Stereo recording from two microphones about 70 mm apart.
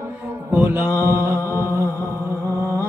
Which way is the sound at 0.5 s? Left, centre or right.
Right.